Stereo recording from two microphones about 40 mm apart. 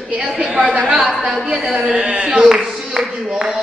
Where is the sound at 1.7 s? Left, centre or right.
Centre.